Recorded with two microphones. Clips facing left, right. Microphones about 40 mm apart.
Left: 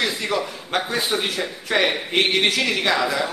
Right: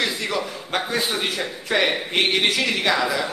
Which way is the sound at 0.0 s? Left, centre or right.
Centre.